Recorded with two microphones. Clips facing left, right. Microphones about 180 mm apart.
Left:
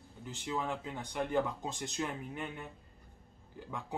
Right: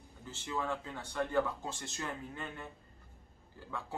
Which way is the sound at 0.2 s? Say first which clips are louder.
Left 1 dB; 15° left (ahead or behind).